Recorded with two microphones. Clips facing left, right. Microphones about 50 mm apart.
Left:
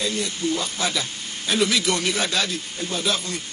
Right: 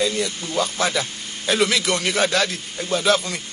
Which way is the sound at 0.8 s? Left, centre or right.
Right.